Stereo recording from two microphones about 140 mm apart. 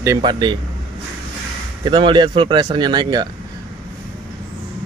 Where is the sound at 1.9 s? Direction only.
35° right (ahead or behind).